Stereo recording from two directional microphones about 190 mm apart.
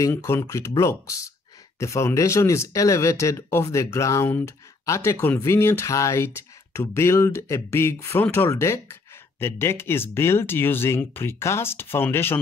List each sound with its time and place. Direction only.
0.0 s speech: 15° left (ahead or behind)